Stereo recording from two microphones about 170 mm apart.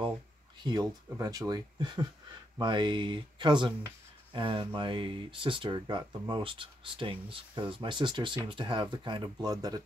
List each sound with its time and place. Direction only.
0.6 s speech: 25° right (ahead or behind)